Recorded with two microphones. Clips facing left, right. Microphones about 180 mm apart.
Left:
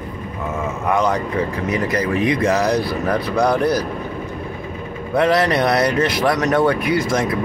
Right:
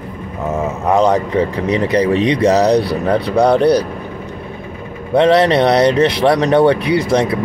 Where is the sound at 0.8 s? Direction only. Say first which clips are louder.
Right 6 dB; 30° right (ahead or behind).